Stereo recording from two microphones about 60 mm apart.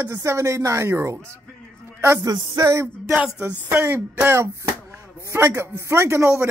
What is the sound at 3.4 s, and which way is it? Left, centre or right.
A woman's voice, right.